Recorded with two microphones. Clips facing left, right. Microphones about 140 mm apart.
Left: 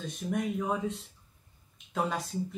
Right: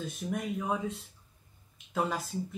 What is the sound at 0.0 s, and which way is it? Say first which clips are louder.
Speech: left 2 dB; centre (ahead or behind).